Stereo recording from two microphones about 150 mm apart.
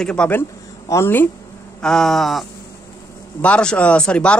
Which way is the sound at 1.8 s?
5° left (ahead or behind).